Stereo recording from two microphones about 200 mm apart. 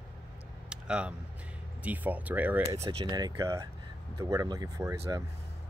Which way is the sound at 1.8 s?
10° right (ahead or behind).